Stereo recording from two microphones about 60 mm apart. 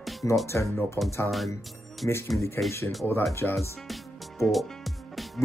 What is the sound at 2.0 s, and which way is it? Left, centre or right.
Speech, left.